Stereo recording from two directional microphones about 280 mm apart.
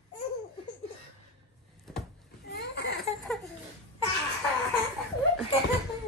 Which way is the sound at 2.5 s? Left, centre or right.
Left.